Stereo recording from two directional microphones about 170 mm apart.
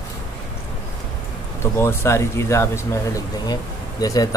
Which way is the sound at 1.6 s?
15° left (ahead or behind).